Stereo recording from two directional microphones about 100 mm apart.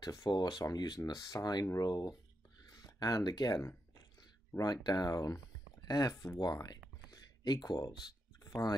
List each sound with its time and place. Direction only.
0.0 s speech: 40° left (ahead or behind)